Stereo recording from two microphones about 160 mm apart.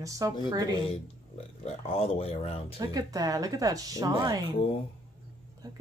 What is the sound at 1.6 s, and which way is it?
Speech, 35° left (ahead or behind).